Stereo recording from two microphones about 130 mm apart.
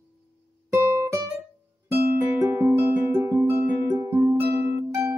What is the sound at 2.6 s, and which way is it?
Music, 15° right (ahead or behind).